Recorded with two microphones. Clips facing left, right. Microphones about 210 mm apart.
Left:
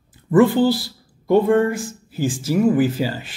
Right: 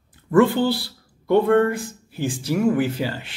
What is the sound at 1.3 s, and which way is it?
Speech, 5° left (ahead or behind).